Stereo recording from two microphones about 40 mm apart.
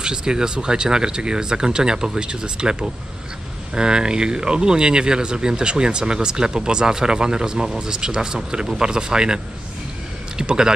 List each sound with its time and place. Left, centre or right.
0.0 s speech: centre